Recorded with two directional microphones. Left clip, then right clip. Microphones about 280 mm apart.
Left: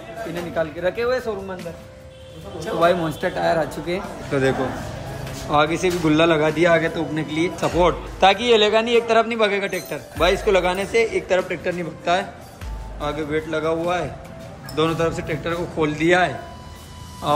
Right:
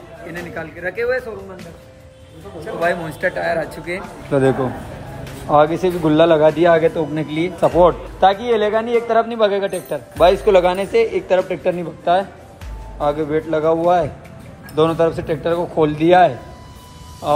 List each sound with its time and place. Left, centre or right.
0.4 s speech: centre
2.8 s speech: centre
5.5 s a man's voice: centre